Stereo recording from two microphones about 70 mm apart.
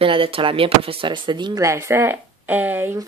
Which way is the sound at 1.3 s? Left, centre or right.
Right.